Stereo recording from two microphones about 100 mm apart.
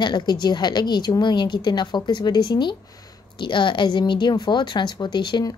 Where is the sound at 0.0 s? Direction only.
50° left (ahead or behind).